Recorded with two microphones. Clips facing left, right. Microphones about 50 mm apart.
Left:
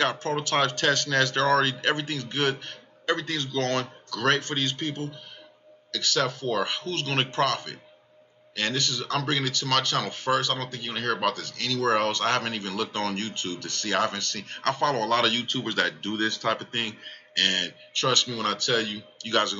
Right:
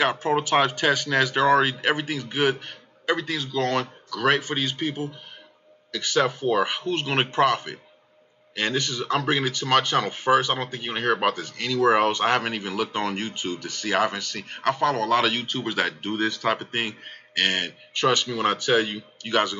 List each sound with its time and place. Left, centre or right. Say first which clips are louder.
0.0 s speech: right 4 dB; centre